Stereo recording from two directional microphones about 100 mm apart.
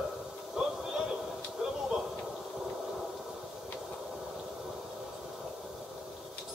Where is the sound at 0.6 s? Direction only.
5° right (ahead or behind).